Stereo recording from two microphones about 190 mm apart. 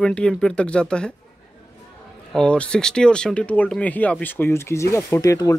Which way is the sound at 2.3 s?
5° left (ahead or behind).